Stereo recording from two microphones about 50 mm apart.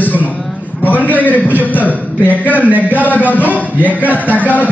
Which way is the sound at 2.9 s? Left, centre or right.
Left.